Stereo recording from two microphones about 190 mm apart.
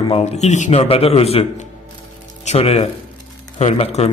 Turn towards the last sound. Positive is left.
turn(degrees=35)  # may be behind; listen again after turning